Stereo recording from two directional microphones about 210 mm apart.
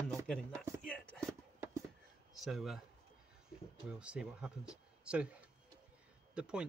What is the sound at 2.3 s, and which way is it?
Speech, centre (ahead or behind).